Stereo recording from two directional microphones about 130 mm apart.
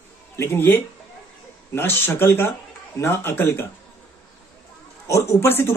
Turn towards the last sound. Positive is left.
turn(degrees=15)  # may be behind; listen again after turning